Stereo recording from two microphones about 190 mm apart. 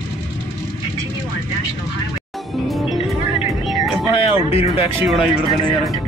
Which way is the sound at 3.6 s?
Centre (ahead or behind).